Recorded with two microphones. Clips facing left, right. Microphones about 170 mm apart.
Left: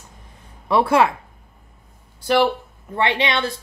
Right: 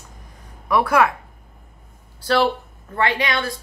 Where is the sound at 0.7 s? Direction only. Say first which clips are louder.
Left 1 dB; 25° left (ahead or behind).